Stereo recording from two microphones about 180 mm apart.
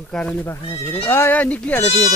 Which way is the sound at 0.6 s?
30° left (ahead or behind).